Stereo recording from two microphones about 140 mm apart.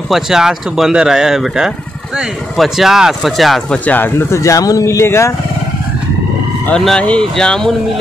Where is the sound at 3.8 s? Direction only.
10° left (ahead or behind).